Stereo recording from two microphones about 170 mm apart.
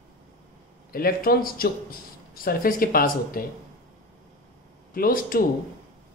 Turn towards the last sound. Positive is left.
turn(degrees=55)  # may be behind; listen again after turning